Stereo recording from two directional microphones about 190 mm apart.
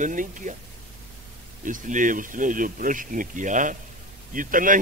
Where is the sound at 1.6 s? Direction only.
45° right (ahead or behind).